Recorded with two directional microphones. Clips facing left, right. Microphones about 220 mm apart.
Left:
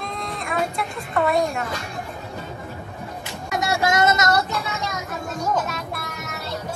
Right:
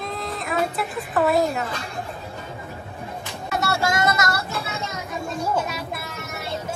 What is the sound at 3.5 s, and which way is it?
Music, 15° left (ahead or behind).